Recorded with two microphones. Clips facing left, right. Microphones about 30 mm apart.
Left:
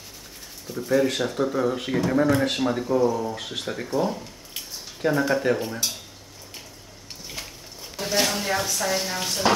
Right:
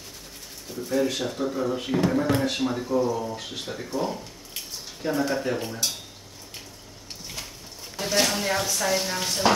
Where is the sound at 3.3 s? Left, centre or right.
Left.